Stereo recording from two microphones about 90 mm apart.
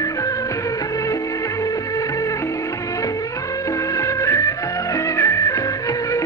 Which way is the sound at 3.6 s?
35° left (ahead or behind).